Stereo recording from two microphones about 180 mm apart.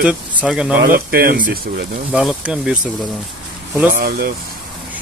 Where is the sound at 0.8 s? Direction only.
55° right (ahead or behind).